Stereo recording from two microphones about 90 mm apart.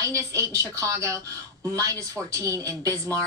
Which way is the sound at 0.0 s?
35° right (ahead or behind).